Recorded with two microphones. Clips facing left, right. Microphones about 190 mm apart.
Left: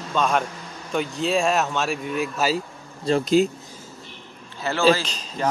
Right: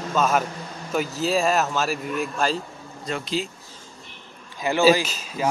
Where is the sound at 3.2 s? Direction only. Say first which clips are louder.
Left 11 dB; 45° left (ahead or behind).